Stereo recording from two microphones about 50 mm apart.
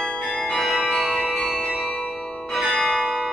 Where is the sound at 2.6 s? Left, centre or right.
Centre.